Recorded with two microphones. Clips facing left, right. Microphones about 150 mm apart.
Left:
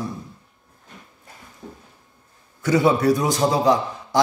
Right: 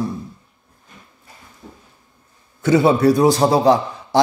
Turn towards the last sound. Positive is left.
turn(degrees=-30)  # may be behind; listen again after turning